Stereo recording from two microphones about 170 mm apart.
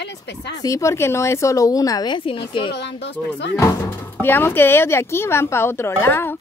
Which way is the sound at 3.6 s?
20° left (ahead or behind).